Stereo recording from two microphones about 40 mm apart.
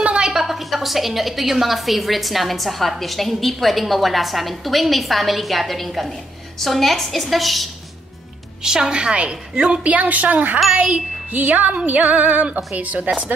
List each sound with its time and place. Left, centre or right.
0.0 s a sound: right
0.3 s a woman's voice: centre
8.6 s a woman's voice: centre
9.8 s music: right